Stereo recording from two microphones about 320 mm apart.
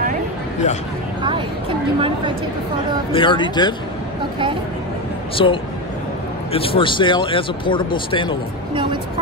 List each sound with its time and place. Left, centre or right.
2.0 s speech: centre
3.1 s speech: centre
5.3 s speech: centre